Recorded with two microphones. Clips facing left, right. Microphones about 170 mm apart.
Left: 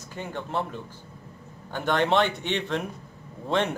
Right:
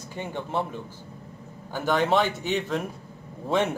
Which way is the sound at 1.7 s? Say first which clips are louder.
Even; 5° right (ahead or behind).